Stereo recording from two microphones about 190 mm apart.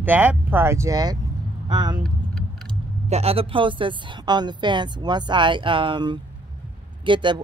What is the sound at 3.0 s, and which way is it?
Speech, 35° right (ahead or behind).